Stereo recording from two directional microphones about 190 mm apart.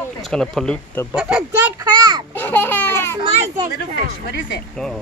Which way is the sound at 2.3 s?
10° left (ahead or behind).